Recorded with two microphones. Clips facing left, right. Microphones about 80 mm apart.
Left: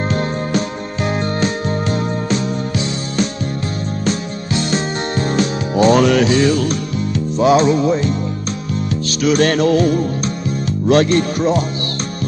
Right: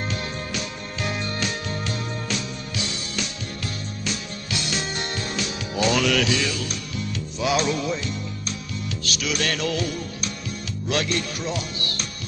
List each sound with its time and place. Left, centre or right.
0.1 s music: left
4.0 s music: left
9.2 s music: left